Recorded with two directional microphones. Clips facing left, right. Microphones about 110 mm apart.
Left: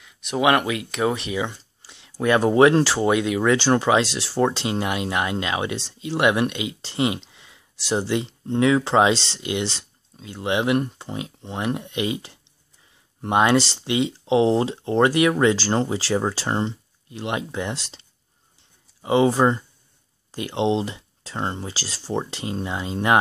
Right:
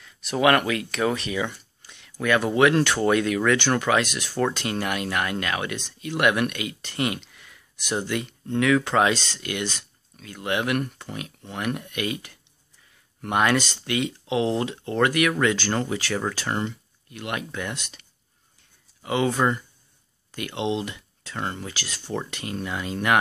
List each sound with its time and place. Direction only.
0.0 s speech: 15° left (ahead or behind); by 3.1 s 30° left (ahead or behind)
3.1 s speech: 15° left (ahead or behind)
3.5 s speech: 30° left (ahead or behind)
18.6 s a sound: 25° left (ahead or behind)
20.2 s speech: 30° left (ahead or behind)